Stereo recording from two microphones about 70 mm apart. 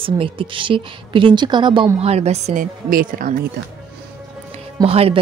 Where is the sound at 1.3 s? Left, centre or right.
Right.